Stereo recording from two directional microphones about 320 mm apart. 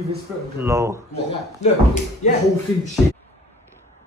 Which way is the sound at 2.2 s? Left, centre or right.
Left.